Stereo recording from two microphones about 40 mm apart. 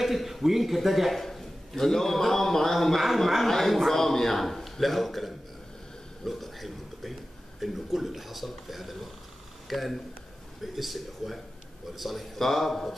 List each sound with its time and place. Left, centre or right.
0.0 s a man's voice: centre
6.2 s a sound: centre
7.6 s a man's voice: centre